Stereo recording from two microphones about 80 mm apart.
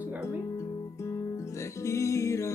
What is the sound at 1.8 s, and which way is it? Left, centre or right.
Music, left.